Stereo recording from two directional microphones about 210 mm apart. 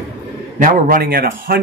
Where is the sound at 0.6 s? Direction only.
40° right (ahead or behind).